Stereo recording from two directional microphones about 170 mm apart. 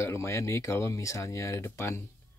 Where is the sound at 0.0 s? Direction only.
15° left (ahead or behind).